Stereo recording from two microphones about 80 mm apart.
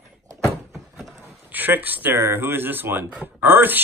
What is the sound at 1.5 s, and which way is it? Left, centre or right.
Speech, right.